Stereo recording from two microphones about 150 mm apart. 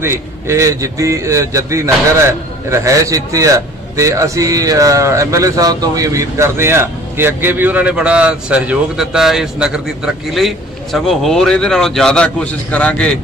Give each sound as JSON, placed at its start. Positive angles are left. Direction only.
{"t": 0.0, "sound": "a man's voice", "side_deg": -20}